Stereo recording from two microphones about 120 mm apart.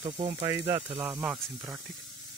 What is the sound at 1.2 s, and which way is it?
Speech, 10° right (ahead or behind).